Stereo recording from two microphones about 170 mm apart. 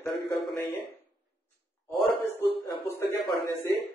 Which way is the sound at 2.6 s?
20° left (ahead or behind).